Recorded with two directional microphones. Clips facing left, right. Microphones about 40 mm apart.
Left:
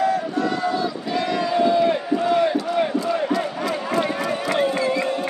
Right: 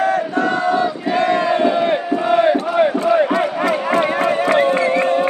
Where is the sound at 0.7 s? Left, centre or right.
Right.